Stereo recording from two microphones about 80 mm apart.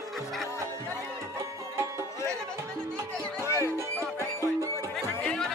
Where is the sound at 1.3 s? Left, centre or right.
Right.